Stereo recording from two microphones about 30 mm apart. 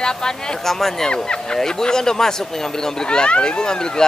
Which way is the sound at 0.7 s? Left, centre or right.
Centre.